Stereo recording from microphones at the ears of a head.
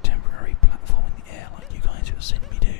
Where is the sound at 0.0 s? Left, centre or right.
Left.